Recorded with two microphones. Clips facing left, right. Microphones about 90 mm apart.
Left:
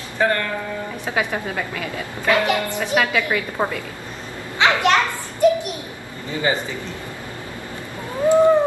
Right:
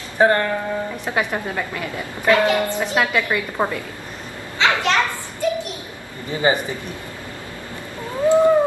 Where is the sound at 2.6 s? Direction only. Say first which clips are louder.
Even; 15° right (ahead or behind).